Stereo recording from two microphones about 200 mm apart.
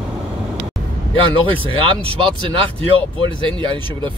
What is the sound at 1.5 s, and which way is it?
Speech, 25° right (ahead or behind).